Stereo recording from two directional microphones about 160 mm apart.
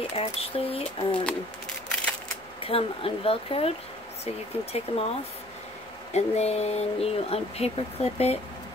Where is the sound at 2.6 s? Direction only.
35° left (ahead or behind).